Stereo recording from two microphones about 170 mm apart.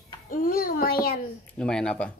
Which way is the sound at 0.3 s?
60° left (ahead or behind).